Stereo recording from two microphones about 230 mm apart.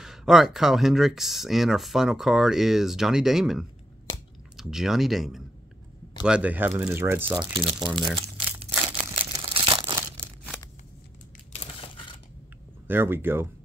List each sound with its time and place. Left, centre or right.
0.0 s speech: centre
7.5 s speech: right
8.2 s crumpling: right
11.5 s a sound: left
12.8 s speech: centre